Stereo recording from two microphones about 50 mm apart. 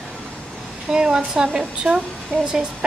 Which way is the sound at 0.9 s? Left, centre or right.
Centre.